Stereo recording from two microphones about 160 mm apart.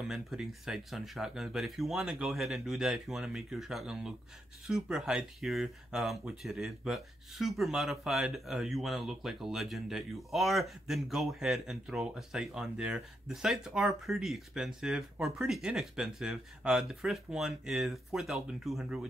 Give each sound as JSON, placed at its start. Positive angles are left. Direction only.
{"t": 0.0, "sound": "speech", "side_deg": 0}